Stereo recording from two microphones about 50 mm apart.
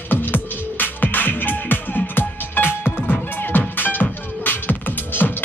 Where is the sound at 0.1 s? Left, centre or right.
Left.